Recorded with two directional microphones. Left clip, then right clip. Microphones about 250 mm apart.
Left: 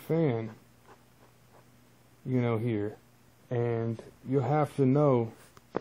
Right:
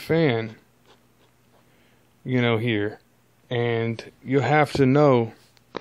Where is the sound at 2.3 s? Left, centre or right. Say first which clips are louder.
Right 8 dB; right.